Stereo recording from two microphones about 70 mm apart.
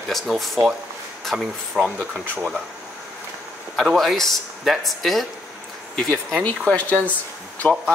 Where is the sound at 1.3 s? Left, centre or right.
Centre.